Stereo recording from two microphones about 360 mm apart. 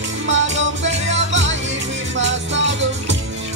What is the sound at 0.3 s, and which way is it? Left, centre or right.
Music, right.